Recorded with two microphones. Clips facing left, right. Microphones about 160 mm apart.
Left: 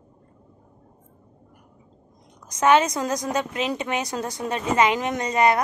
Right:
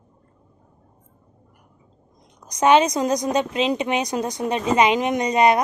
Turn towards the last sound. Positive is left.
turn(degrees=-20)  # may be behind; listen again after turning